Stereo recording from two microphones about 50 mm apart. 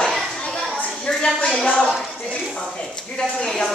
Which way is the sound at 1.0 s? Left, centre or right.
Centre.